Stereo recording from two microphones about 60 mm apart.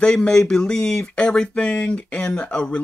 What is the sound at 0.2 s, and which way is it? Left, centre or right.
Speech, centre.